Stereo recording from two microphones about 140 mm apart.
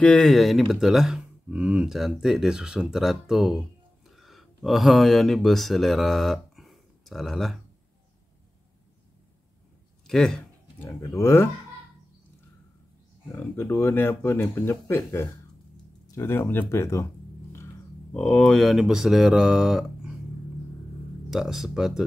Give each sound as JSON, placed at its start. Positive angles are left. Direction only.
{"t": 0.0, "sound": "speech", "side_deg": 5}
{"t": 10.0, "sound": "speech", "side_deg": 5}
{"t": 10.8, "sound": "speech", "side_deg": 15}
{"t": 13.3, "sound": "speech", "side_deg": 15}
{"t": 18.1, "sound": "speech", "side_deg": 5}
{"t": 21.3, "sound": "speech", "side_deg": -5}